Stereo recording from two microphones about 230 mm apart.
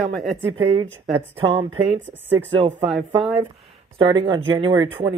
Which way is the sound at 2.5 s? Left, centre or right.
Right.